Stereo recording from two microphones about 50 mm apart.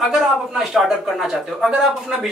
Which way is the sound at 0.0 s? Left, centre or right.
Centre.